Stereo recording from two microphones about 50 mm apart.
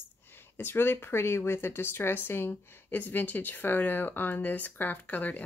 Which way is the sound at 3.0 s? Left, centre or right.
Left.